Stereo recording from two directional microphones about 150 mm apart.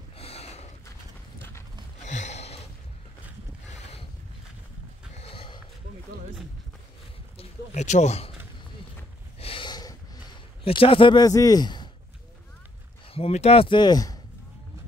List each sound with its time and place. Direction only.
0.2 s snort: 45° left (ahead or behind)
2.0 s gasp: 50° left (ahead or behind)
5.1 s horse: 40° left (ahead or behind)
7.3 s a sound: 50° left (ahead or behind)
9.4 s snort: 35° left (ahead or behind)
10.6 s a man's voice: 40° left (ahead or behind)
13.1 s speech: 40° left (ahead or behind); by 14.2 s 25° left (ahead or behind)